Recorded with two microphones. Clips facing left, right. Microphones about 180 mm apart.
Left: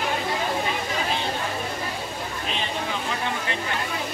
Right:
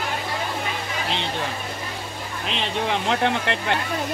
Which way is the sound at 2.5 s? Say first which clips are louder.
Right 6 dB; 75° right (ahead or behind).